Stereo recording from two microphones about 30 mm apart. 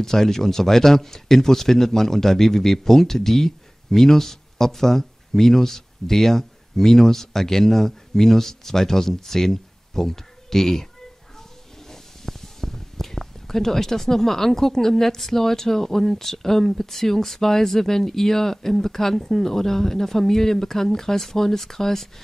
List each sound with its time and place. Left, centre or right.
0.0 s speech: centre